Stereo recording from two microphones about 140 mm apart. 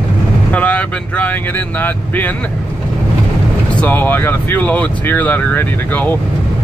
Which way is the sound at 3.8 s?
15° left (ahead or behind).